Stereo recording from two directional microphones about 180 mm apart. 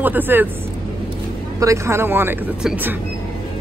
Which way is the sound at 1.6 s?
15° right (ahead or behind).